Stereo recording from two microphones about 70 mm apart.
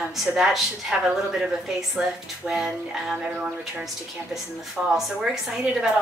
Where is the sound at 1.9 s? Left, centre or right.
Centre.